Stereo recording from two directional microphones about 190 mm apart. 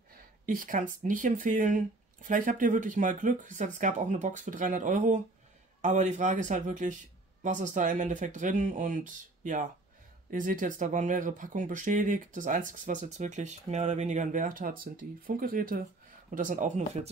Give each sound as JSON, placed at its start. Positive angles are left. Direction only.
{"t": 0.5, "sound": "speech", "side_deg": -45}